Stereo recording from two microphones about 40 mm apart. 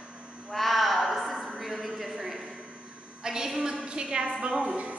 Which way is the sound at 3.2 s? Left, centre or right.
Centre.